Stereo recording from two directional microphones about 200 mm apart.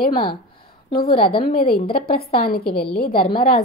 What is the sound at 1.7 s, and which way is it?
A woman's voice, 50° left (ahead or behind).